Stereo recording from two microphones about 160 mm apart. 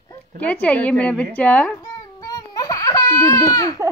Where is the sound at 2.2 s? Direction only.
20° left (ahead or behind).